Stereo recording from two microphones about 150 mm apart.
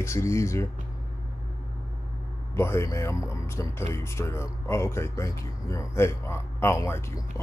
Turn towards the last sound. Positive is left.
turn(degrees=20)  # may be behind; listen again after turning